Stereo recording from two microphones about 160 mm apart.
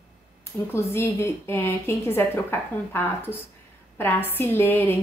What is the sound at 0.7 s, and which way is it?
A woman's voice, 15° left (ahead or behind).